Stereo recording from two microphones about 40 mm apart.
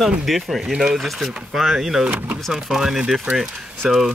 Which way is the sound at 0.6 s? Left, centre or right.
Centre.